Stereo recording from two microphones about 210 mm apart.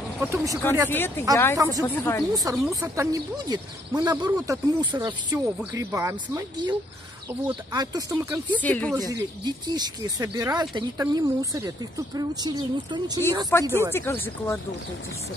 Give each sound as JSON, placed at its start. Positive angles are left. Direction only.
{"t": 0.2, "sound": "speech", "side_deg": -15}
{"t": 0.8, "sound": "speech", "side_deg": 10}
{"t": 2.3, "sound": "speech", "side_deg": -15}
{"t": 8.5, "sound": "speech", "side_deg": 5}
{"t": 8.9, "sound": "speech", "side_deg": -15}
{"t": 13.7, "sound": "speech", "side_deg": 10}